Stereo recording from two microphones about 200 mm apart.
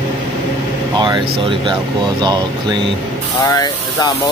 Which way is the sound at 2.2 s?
20° right (ahead or behind).